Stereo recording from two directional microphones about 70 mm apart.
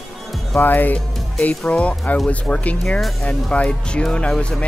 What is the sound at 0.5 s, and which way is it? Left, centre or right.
Speech, left.